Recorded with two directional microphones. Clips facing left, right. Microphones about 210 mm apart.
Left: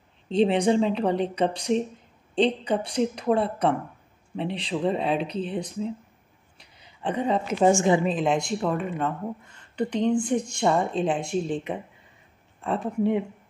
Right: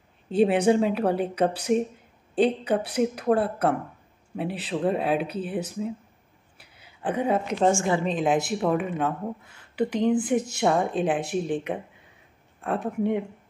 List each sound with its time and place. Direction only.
0.3 s speech: 5° right (ahead or behind)
7.7 s a woman's voice: 20° left (ahead or behind)
8.0 s speech: centre (ahead or behind)